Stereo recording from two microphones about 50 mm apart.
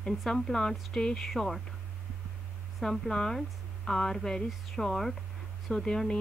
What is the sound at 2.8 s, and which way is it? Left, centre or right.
Speech, centre.